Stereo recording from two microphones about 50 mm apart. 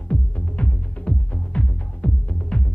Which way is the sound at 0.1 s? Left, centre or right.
Left.